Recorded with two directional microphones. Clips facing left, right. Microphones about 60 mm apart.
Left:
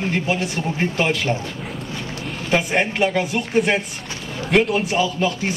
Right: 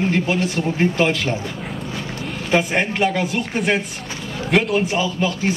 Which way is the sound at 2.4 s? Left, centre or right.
Centre.